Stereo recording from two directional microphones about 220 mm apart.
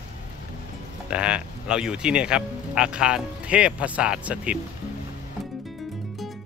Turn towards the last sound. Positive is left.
turn(degrees=-5)  # may be behind; listen again after turning